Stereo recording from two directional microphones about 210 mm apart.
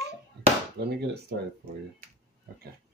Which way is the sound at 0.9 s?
50° right (ahead or behind).